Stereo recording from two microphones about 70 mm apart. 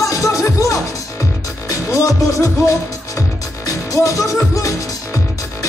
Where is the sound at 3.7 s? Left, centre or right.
Left.